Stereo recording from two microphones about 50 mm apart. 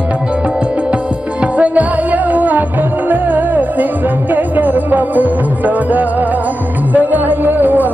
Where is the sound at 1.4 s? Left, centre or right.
Right.